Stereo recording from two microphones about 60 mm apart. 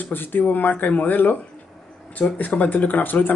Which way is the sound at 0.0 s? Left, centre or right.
Left.